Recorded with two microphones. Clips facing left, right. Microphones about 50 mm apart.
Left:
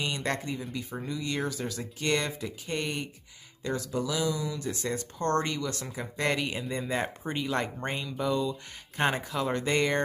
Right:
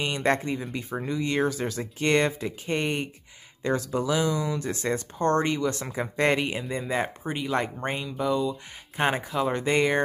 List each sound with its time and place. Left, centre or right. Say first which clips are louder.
0.0 s speech: right 6 dB; right
5.2 s speech: right 5 dB; right
6.3 s speech: right 4 dB; right
6.6 s speech: right 3 dB; centre